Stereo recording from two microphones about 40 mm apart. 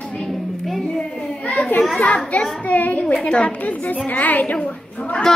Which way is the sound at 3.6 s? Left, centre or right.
Left.